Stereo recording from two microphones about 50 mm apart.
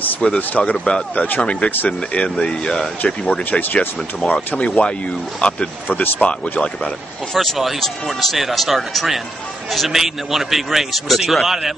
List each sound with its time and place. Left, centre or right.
0.4 s speech: left
3.4 s speech: left
4.6 s speech: left
7.3 s a man's voice: centre